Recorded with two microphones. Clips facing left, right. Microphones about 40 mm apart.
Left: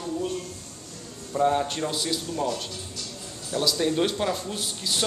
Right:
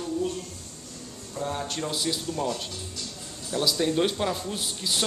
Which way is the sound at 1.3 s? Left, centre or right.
Left.